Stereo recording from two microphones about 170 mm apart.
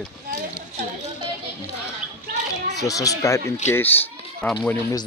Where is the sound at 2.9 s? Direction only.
20° left (ahead or behind).